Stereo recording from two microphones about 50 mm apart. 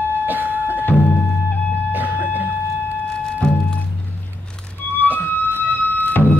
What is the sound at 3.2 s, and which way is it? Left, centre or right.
Music, centre.